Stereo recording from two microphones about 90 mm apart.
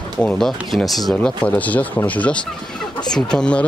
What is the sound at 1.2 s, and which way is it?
Speech, 15° left (ahead or behind).